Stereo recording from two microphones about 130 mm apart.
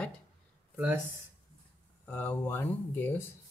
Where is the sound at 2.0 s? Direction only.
15° left (ahead or behind).